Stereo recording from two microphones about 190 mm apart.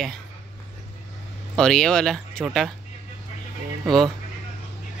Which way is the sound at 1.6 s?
5° left (ahead or behind).